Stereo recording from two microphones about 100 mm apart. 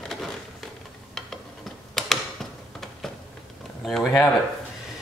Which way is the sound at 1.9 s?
5° left (ahead or behind).